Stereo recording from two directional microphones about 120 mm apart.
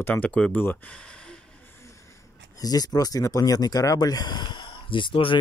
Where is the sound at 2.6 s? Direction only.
30° left (ahead or behind).